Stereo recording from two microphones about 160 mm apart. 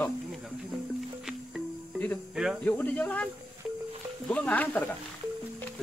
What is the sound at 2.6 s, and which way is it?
Speech, 10° left (ahead or behind).